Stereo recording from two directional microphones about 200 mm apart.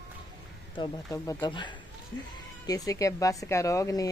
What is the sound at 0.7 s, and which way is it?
Speech, 15° left (ahead or behind).